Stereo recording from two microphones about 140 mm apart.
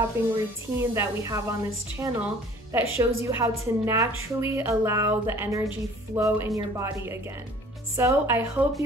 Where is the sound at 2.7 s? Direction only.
20° right (ahead or behind).